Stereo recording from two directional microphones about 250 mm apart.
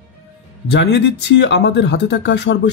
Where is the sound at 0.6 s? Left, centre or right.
Left.